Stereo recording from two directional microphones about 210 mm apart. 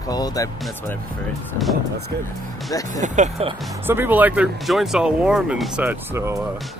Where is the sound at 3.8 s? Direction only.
10° right (ahead or behind).